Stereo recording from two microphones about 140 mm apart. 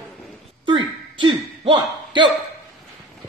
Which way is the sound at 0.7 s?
35° right (ahead or behind).